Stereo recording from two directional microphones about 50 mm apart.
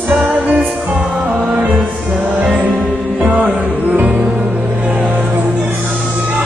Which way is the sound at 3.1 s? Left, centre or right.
Right.